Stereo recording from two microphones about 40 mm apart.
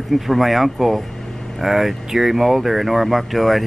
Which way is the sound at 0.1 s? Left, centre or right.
Centre.